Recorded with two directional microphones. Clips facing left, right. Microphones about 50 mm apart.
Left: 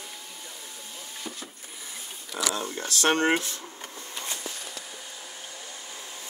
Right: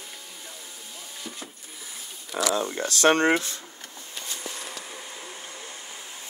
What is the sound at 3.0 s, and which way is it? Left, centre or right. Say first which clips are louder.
Speech: right 4 dB; right.